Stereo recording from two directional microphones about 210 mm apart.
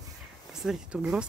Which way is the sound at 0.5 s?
Centre (ahead or behind).